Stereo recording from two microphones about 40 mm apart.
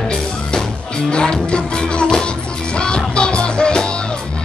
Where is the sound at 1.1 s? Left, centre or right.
Left.